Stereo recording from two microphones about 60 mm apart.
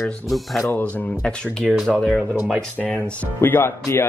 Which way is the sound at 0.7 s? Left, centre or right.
Left.